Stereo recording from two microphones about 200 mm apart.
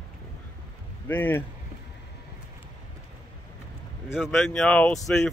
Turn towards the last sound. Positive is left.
turn(degrees=5)  # may be behind; listen again after turning